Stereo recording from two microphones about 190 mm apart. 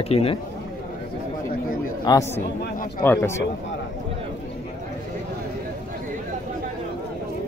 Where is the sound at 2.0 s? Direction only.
15° left (ahead or behind).